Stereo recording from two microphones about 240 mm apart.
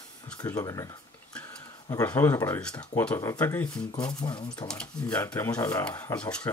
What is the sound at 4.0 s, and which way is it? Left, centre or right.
Speech, centre.